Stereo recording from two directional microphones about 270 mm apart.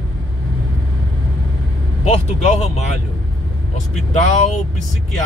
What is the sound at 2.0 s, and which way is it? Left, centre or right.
Speech, left.